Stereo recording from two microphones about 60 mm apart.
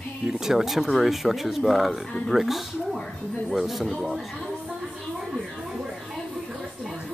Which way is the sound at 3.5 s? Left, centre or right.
Centre.